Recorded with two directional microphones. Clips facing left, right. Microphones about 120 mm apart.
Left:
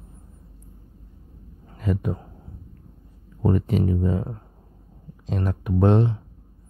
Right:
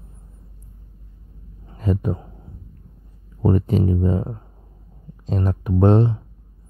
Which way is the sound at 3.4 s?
30° right (ahead or behind).